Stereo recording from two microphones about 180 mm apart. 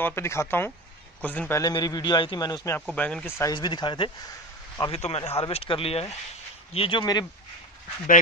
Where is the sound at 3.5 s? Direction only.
25° left (ahead or behind).